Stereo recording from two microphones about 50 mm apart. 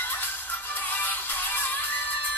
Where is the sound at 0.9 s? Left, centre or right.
Left.